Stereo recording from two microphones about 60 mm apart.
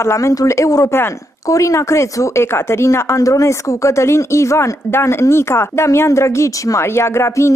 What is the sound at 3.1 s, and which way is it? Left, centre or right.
A woman's voice, left.